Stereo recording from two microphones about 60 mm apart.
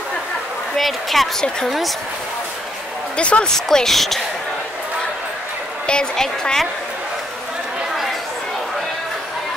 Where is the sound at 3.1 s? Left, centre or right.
Centre.